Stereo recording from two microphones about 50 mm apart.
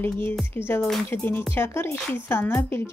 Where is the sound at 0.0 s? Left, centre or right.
Left.